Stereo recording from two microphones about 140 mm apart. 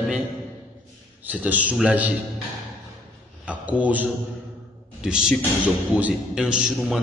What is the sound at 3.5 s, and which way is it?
A man's voice, 10° right (ahead or behind).